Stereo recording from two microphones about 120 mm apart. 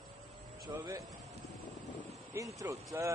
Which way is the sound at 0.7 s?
35° right (ahead or behind).